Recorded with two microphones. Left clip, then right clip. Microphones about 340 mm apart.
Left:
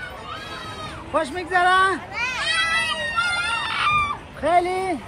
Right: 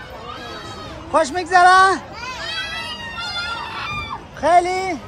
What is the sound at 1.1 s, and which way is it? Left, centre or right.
A man's voice, centre.